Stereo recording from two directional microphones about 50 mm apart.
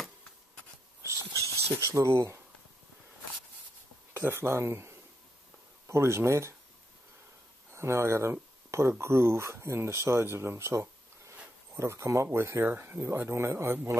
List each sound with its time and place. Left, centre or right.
1.0 s a sound: right
4.2 s speech: right
7.7 s speech: right
10.2 s speech: right
12.4 s speech: right